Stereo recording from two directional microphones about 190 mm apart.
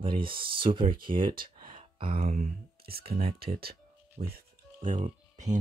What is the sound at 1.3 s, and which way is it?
Speech, 50° right (ahead or behind).